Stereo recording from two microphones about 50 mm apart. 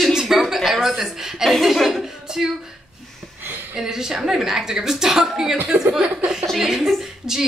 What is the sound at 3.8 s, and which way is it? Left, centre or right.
A woman's voice, centre.